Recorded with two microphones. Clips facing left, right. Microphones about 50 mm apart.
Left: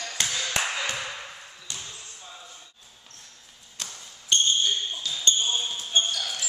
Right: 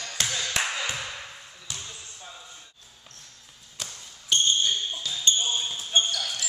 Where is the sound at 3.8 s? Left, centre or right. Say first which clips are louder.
Even; centre.